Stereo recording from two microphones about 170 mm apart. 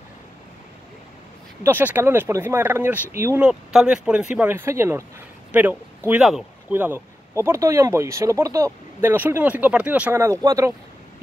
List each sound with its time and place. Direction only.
1.6 s a man's voice: 10° right (ahead or behind)